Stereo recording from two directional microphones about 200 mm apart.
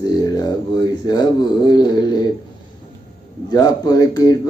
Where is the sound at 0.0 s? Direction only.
20° left (ahead or behind).